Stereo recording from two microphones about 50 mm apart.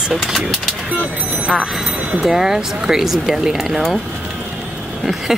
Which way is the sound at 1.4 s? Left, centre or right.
Centre.